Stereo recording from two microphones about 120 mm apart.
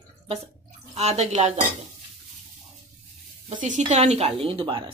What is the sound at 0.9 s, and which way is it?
Speech, 65° right (ahead or behind).